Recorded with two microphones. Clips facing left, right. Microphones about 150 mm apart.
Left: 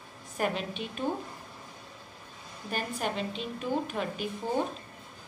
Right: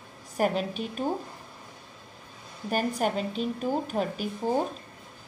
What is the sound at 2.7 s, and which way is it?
A woman's voice, 45° right (ahead or behind).